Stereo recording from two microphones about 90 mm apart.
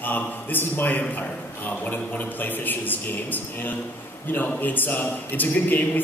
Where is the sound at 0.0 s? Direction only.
20° left (ahead or behind).